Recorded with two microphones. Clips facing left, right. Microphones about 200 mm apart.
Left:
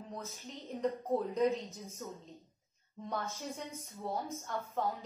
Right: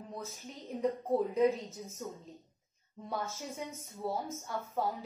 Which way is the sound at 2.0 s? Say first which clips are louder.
Right 2 dB; 15° right (ahead or behind).